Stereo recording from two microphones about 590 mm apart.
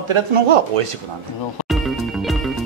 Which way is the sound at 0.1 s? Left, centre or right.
Right.